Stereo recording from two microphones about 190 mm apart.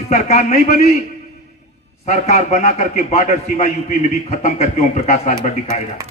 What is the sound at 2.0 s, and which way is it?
A man's voice, 40° left (ahead or behind).